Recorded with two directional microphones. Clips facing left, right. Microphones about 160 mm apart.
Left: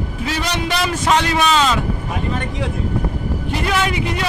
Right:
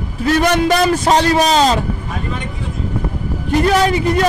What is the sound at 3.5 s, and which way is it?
Speech, 40° right (ahead or behind).